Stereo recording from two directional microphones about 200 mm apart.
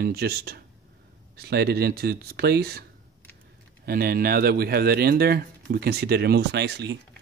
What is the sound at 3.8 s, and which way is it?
A man's voice, 50° right (ahead or behind).